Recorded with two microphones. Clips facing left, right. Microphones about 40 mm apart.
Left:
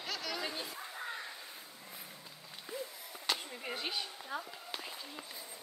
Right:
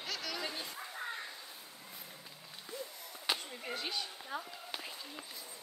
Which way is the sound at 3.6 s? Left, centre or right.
Centre.